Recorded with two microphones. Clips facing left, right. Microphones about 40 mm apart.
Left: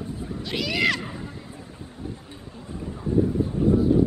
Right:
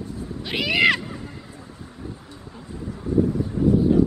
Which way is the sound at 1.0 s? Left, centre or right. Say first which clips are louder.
Even; centre.